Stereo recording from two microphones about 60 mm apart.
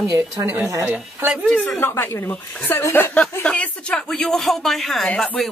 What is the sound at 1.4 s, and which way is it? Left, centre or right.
Speech, centre.